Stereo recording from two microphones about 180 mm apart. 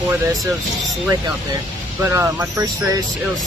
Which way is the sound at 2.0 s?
10° right (ahead or behind).